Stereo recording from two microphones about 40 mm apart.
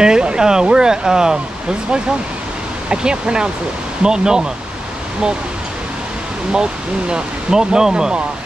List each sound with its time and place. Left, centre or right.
0.0 s speech: right
6.5 s speech: right